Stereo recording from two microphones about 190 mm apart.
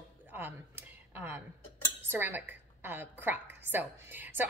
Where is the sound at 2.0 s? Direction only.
10° right (ahead or behind).